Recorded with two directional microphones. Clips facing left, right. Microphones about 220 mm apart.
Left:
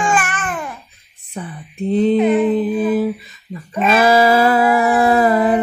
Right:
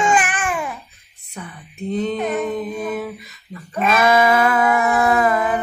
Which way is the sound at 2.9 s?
30° left (ahead or behind).